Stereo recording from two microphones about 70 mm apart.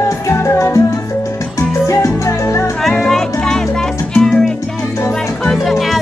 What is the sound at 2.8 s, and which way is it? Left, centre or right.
Music, centre.